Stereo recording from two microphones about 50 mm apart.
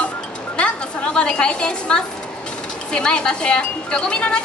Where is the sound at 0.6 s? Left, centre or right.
Left.